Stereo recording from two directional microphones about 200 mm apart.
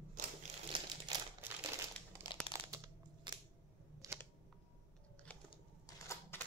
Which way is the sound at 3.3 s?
25° right (ahead or behind).